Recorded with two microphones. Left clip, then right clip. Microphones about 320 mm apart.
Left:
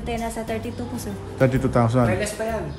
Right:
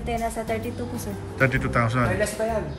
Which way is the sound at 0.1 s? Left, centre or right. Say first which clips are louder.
Right 1 dB; centre.